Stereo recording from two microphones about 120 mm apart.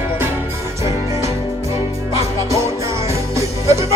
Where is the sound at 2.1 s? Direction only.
25° right (ahead or behind).